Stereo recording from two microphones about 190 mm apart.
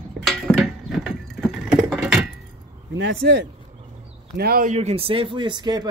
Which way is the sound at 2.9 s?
65° right (ahead or behind).